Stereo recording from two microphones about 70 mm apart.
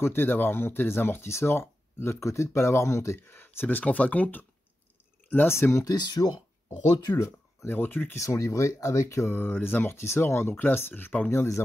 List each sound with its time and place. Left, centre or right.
0.0 s speech: left
5.9 s speech: left
7.6 s speech: left
8.2 s speech: left
9.3 s speech: left